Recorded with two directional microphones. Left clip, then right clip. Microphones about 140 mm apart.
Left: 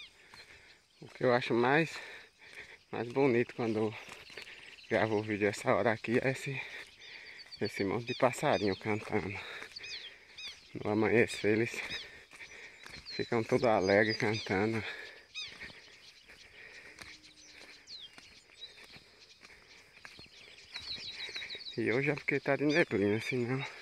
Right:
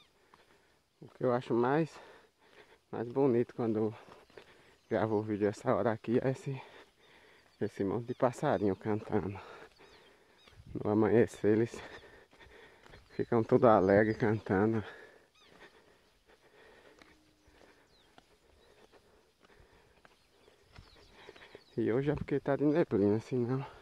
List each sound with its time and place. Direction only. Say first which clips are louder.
1.1 s speech: left 2 dB; 15° right (ahead or behind); by 2.1 s 35° right (ahead or behind)
2.1 s a sound: left 9 dB; 25° right (ahead or behind)
4.9 s speech: left 1 dB; 30° right (ahead or behind)
7.8 s speech: left 1 dB; 25° right (ahead or behind)
8.5 s speech: even; 35° right (ahead or behind)
9.8 s a sound: left 15 dB; 35° right (ahead or behind)
10.8 s speech: right 1 dB; 35° right (ahead or behind)
11.4 s a sound: right 1 dB; 40° right (ahead or behind)
13.2 s speech: right 2 dB; 35° right (ahead or behind)
13.5 s speech: right 4 dB; 60° right (ahead or behind)
14.4 s speech: right 1 dB; 35° right (ahead or behind)
21.2 s a sound: left 12 dB; 40° right (ahead or behind)
22.1 s speech: left 2 dB; 45° right (ahead or behind)
22.4 s speech: even; 30° right (ahead or behind)